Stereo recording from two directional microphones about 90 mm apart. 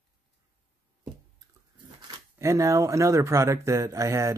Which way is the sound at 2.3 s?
35° right (ahead or behind).